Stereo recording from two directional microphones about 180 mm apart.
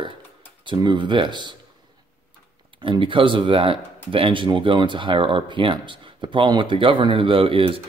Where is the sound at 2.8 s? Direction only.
30° right (ahead or behind).